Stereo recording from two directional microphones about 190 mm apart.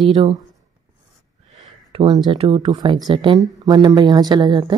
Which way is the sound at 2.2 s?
30° right (ahead or behind).